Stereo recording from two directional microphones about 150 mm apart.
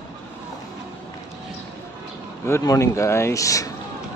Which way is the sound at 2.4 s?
20° left (ahead or behind).